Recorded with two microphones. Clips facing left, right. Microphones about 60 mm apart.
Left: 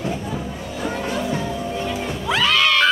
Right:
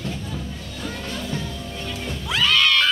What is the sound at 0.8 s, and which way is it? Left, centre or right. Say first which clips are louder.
Music: left 7 dB; left.